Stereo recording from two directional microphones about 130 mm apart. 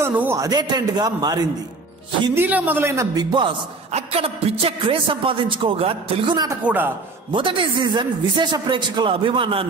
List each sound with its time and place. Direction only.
0.0 s a man's voice: 15° right (ahead or behind)
0.4 s a man's voice: 30° right (ahead or behind)
2.3 s a man's voice: 15° right (ahead or behind)
3.2 s a man's voice: 35° right (ahead or behind)
3.9 s a man's voice: 50° right (ahead or behind); by 6.5 s 35° right (ahead or behind)
6.6 s a man's voice: 15° right (ahead or behind)
7.3 s a man's voice: 40° right (ahead or behind)